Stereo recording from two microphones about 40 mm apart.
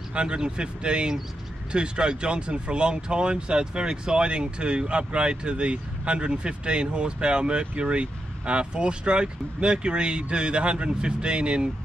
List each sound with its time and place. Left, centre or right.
0.1 s speech: right